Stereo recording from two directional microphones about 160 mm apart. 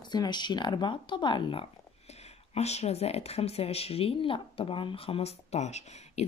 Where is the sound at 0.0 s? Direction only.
25° left (ahead or behind).